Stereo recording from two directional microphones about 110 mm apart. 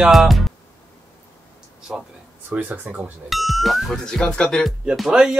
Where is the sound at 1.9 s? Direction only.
5° right (ahead or behind).